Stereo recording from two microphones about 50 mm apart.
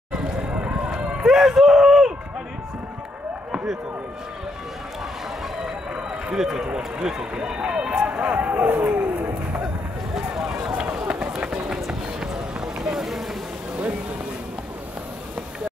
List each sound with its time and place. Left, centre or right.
0.5 s a sound: right
1.2 s speech: centre
6.3 s speech: centre
8.2 s speech: right
8.8 s roaring cats: right
10.1 s run: centre
11.9 s vehicle: centre